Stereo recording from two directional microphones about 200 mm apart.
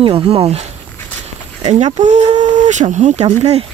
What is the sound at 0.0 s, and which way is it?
Speech, 30° right (ahead or behind).